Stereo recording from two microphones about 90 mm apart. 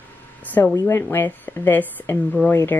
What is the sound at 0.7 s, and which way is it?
Speech, 30° left (ahead or behind).